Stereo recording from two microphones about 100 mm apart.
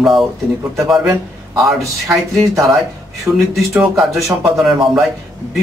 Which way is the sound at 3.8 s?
Centre (ahead or behind).